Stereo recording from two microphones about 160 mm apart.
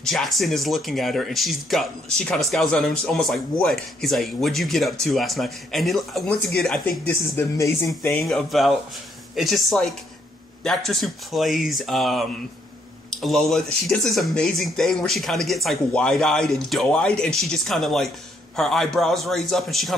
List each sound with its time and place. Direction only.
0.0 s speech: centre (ahead or behind)
7.3 s speech: 15° left (ahead or behind)
8.1 s speech: centre (ahead or behind)